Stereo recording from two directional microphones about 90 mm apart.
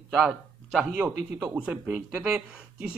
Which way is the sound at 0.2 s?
5° right (ahead or behind).